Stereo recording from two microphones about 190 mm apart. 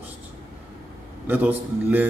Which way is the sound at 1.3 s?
10° right (ahead or behind).